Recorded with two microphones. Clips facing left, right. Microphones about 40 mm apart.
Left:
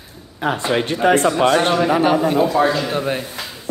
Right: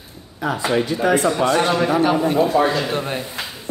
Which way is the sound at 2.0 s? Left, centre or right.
Centre.